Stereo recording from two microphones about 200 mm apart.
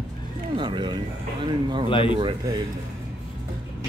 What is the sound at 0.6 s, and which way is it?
Speech, 25° right (ahead or behind).